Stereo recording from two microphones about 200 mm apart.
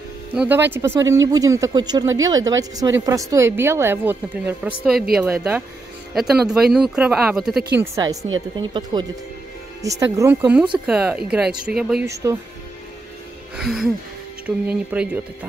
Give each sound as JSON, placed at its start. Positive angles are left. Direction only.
{"t": 0.3, "sound": "a woman's voice", "side_deg": -5}
{"t": 7.7, "sound": "a woman's voice", "side_deg": -15}
{"t": 12.1, "sound": "a woman's voice", "side_deg": -15}
{"t": 13.6, "sound": "a woman's voice", "side_deg": 0}